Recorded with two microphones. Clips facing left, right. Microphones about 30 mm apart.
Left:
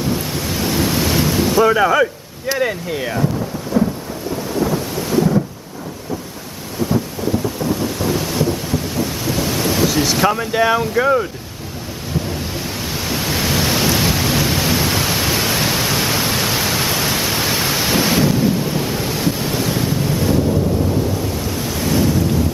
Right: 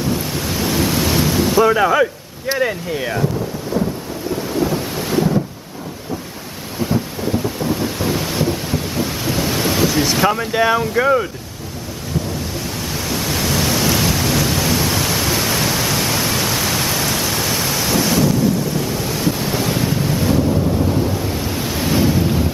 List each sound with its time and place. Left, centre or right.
0.0 s ocean: centre
2.6 s speech: centre
3.8 s thunder: centre
4.6 s thunder: centre
6.8 s thunder: centre
12.9 s thunder: centre
19.3 s wind noise: centre
21.1 s waves: centre